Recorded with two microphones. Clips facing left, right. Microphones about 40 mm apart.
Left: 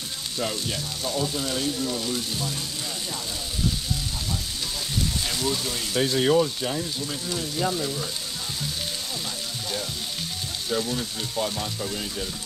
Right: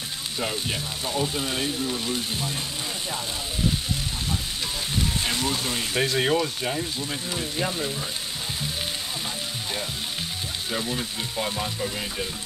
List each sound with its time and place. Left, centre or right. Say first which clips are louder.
0.4 s frying: even; right
5.2 s frying: right 1 dB; right
5.9 s speech: left 3 dB; right
7.0 s frying: even; right
10.7 s frying: left 3 dB; right